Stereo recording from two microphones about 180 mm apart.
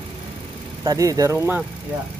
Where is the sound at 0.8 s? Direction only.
20° right (ahead or behind).